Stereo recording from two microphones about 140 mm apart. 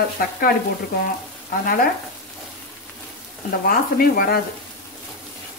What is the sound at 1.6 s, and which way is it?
Speech, 90° left.